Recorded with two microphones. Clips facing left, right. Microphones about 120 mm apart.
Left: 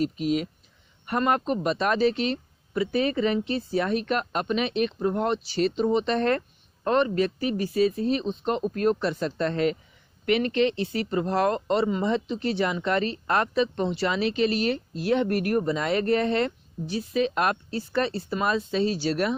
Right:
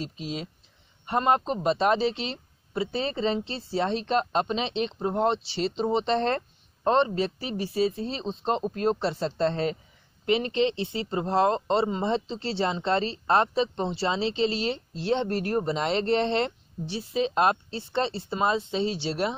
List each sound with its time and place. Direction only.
0.0 s speech: 25° right (ahead or behind)